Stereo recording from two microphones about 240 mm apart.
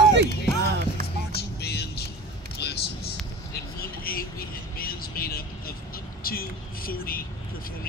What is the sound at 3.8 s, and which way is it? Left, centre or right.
Vehicle, left.